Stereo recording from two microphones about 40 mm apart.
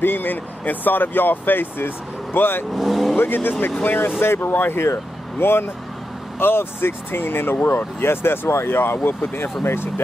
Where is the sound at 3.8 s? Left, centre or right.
Left.